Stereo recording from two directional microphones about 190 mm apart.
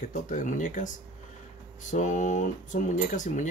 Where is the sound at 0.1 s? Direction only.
40° left (ahead or behind).